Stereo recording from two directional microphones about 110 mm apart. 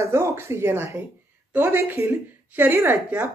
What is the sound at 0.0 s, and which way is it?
A woman's voice, 25° right (ahead or behind).